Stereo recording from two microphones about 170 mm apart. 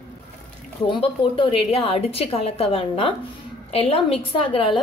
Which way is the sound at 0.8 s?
30° left (ahead or behind).